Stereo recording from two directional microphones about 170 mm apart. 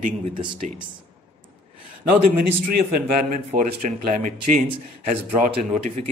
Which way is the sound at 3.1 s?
50° right (ahead or behind).